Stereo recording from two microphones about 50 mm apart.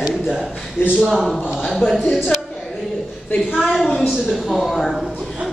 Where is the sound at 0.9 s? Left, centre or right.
Centre.